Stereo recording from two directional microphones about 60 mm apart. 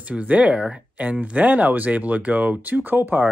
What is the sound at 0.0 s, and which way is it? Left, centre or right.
Speech, right.